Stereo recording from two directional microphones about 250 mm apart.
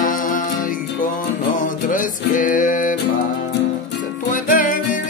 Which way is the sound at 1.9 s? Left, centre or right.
Left.